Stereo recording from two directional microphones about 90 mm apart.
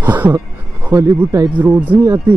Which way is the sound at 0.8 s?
30° right (ahead or behind).